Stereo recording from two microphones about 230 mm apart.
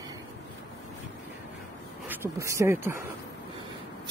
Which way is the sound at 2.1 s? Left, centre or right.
Centre.